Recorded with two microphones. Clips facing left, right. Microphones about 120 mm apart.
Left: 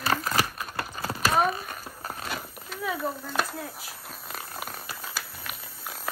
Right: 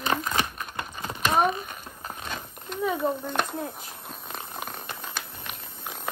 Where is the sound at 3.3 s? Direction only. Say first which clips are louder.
Right 1 dB; 5° left (ahead or behind).